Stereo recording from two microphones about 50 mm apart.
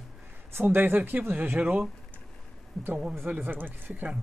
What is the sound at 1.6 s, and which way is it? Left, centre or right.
Speech, right.